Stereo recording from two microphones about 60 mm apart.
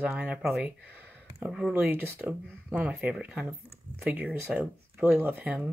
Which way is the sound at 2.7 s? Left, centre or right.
Right.